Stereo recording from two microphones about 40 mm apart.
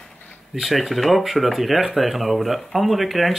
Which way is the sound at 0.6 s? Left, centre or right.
Centre.